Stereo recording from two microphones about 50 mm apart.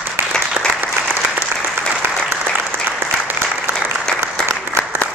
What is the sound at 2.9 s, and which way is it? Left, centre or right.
Applause, right.